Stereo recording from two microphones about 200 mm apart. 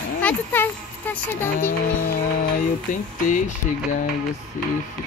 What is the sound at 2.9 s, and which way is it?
Speech, 40° left (ahead or behind).